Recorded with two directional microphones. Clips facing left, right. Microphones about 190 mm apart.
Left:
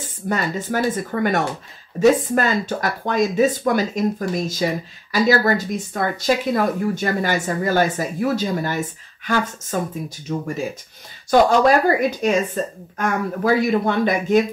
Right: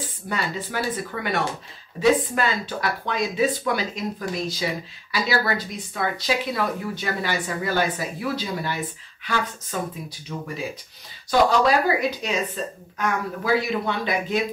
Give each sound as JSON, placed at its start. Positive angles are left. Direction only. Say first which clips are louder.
{"t": 0.3, "sound": "speech", "louder": "left 6 dB", "side_deg": 45}